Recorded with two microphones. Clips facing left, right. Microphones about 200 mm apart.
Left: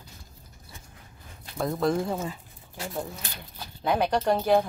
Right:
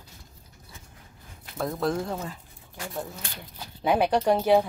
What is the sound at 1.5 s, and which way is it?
Speech, centre (ahead or behind).